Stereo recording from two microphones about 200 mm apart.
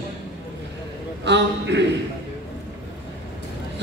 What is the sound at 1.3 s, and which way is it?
Speech, 60° right (ahead or behind).